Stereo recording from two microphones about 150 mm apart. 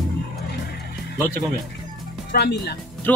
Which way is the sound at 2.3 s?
90° left.